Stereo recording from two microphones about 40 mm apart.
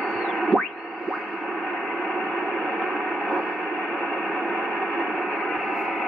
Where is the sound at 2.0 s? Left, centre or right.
Centre.